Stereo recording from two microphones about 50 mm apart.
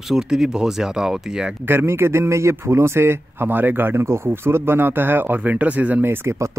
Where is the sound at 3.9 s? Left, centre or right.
Right.